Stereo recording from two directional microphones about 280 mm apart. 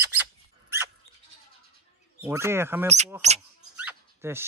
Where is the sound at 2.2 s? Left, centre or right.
Centre.